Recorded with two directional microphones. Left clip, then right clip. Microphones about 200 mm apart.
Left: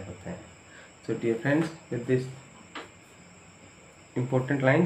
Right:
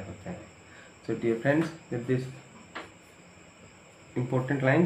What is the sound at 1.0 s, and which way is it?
Speech, 5° left (ahead or behind).